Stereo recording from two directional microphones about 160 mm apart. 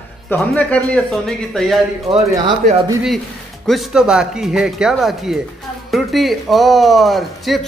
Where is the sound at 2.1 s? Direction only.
25° right (ahead or behind).